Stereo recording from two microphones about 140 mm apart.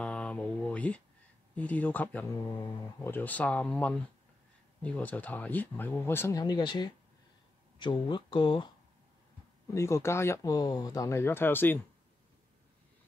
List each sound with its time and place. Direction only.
0.0 s a sound: 10° left (ahead or behind)
1.5 s speech: 10° left (ahead or behind); by 8.7 s 35° left (ahead or behind)
9.8 s speech: 20° left (ahead or behind)